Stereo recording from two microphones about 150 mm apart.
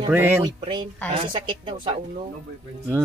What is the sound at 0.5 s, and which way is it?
A woman's voice, 35° right (ahead or behind).